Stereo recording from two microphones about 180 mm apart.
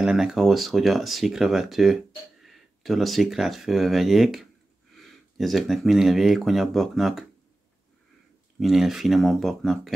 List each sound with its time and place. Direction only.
0.0 s speech: 5° right (ahead or behind)
8.5 s speech: centre (ahead or behind)